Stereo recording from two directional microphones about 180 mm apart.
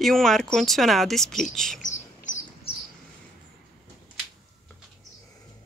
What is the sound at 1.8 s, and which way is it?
Bird, 45° left (ahead or behind).